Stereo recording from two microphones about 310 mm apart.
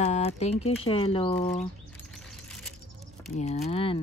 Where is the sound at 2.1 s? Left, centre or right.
Centre.